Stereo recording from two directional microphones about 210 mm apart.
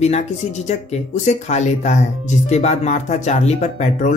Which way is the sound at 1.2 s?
35° left (ahead or behind).